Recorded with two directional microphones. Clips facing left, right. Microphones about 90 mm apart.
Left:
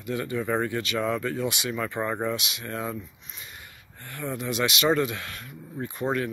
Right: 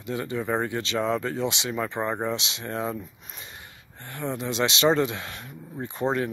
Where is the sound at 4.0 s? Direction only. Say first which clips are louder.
Right 2 dB; 25° right (ahead or behind).